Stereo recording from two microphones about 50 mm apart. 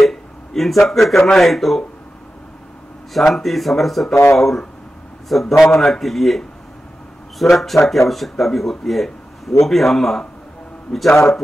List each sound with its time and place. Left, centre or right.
0.0 s speech: centre
3.1 s speech: centre
4.1 s speech: left
4.4 s speech: centre